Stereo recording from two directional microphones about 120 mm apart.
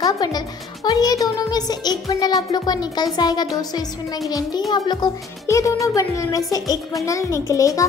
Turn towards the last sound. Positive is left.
turn(degrees=25)  # may be behind; listen again after turning